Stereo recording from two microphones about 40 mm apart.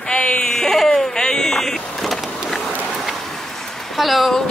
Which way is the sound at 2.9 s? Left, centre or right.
Centre.